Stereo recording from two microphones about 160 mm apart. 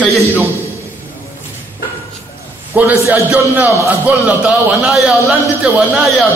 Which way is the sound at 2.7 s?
10° right (ahead or behind).